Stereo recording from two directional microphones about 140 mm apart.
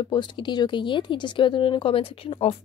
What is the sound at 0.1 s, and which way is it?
Speech, 35° left (ahead or behind).